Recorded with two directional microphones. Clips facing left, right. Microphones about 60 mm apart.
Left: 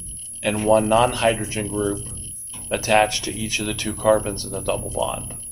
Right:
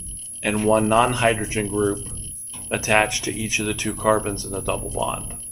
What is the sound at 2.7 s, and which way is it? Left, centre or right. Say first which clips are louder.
Speech: left 2 dB; centre.